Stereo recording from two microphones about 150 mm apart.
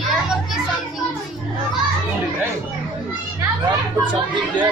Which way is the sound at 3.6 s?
30° right (ahead or behind).